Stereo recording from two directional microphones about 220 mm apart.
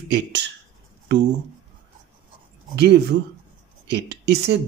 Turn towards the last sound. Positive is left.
turn(degrees=-50)  # may be behind; listen again after turning